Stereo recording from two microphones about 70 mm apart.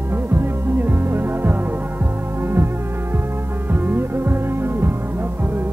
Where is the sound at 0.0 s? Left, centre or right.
Right.